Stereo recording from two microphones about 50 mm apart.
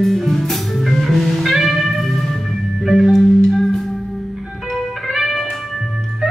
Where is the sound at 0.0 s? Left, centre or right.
Centre.